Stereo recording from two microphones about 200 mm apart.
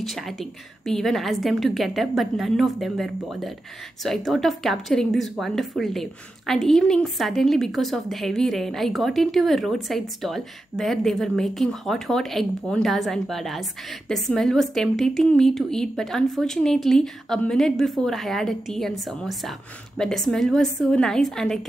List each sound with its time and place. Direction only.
0.0 s a woman's voice: centre (ahead or behind)